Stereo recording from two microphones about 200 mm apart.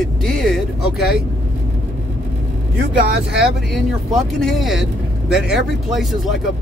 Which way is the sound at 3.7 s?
Centre (ahead or behind).